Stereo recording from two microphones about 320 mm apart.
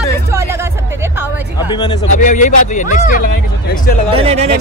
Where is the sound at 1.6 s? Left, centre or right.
Centre.